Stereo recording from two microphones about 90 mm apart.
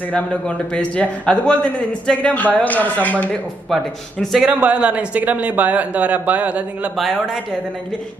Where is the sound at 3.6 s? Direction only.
Centre (ahead or behind).